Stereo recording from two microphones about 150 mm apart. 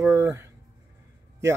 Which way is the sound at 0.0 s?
15° right (ahead or behind).